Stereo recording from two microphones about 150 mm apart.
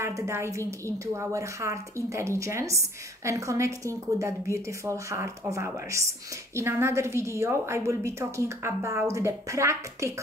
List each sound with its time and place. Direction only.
0.0 s a woman's voice: 20° right (ahead or behind)